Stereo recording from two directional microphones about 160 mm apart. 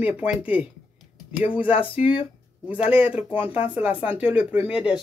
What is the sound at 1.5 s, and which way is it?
Speech, 35° left (ahead or behind).